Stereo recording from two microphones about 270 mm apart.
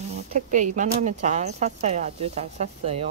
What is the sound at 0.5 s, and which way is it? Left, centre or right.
Speech, right.